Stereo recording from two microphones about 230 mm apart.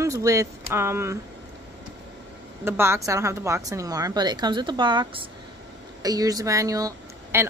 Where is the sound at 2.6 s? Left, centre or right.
Centre.